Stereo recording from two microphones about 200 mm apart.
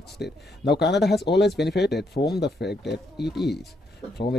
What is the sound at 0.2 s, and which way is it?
Speech, 55° left (ahead or behind).